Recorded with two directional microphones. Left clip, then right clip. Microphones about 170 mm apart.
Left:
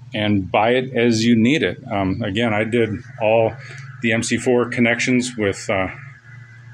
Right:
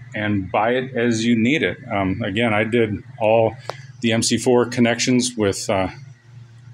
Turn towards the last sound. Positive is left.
turn(degrees=-25)  # may be behind; listen again after turning